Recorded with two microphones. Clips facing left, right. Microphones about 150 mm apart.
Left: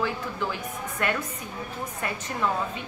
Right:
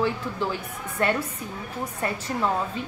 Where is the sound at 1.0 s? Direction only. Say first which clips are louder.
Right 4 dB; 35° right (ahead or behind).